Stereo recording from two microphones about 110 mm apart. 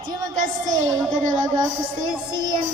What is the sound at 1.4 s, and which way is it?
Child singing, 35° right (ahead or behind).